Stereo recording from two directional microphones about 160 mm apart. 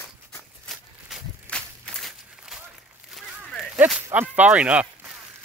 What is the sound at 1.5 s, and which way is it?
Walk, 10° left (ahead or behind).